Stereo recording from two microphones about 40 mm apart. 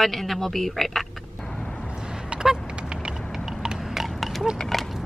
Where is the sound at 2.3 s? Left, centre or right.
Centre.